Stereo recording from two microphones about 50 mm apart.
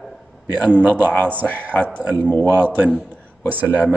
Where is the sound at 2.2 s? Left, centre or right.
Left.